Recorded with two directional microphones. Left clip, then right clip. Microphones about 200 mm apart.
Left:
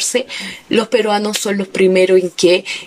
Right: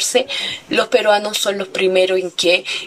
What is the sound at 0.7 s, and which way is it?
Speech, 35° left (ahead or behind).